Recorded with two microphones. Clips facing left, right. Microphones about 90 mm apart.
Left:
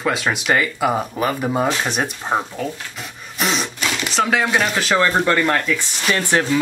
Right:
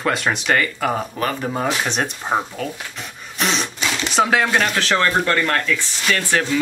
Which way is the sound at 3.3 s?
Centre (ahead or behind).